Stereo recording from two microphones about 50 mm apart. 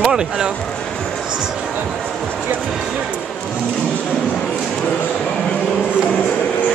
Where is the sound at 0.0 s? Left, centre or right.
Centre.